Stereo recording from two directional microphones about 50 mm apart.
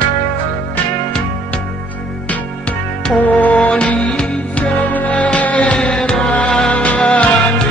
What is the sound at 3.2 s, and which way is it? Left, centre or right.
Music, left.